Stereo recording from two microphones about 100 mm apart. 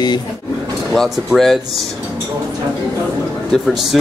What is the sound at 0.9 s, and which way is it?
Speech, 5° left (ahead or behind).